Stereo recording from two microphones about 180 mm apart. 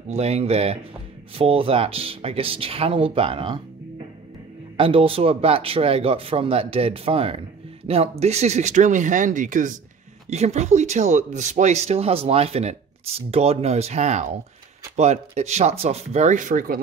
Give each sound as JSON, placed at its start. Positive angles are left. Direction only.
{"t": 0.1, "sound": "speech", "side_deg": -35}
{"t": 4.7, "sound": "speech", "side_deg": -30}